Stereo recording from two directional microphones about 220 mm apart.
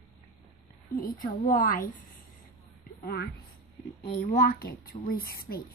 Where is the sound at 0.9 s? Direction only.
40° left (ahead or behind).